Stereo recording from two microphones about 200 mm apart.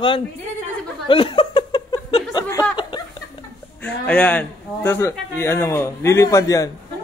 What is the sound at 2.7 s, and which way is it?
Chuckle, 25° left (ahead or behind).